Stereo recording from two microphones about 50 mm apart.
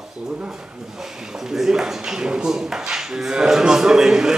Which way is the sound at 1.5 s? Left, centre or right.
Centre.